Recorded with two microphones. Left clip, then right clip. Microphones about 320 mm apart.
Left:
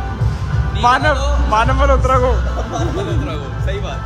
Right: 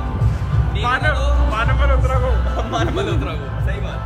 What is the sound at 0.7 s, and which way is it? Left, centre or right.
Speech, centre.